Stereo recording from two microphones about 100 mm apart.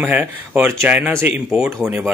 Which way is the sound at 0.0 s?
20° right (ahead or behind).